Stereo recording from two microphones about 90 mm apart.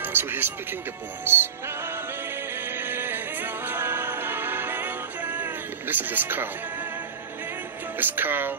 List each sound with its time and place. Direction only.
0.0 s a sound: 20° right (ahead or behind)
1.2 s speech: 25° right (ahead or behind)
2.8 s music: 25° right (ahead or behind)
8.0 s speech: 20° right (ahead or behind)